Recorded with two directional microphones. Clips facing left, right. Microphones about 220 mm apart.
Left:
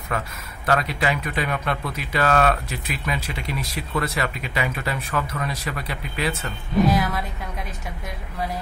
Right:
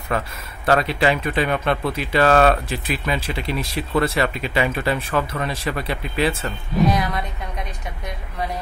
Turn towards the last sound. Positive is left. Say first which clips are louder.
# even
turn(degrees=0)  # may be behind; listen again after turning